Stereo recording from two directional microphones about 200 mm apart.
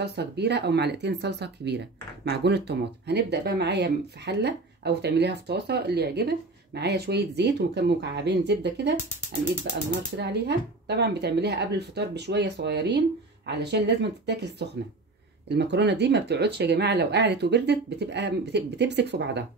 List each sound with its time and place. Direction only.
0.0 s speech: 55° right (ahead or behind)
10.1 s speech: 60° right (ahead or behind)